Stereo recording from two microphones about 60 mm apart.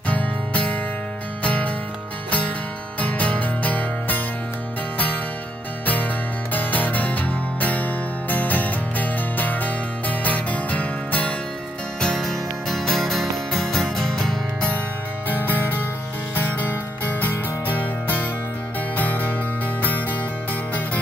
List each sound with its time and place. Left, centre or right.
0.1 s music: left
3.0 s music: left
6.5 s music: left
12.0 s music: centre
15.2 s music: left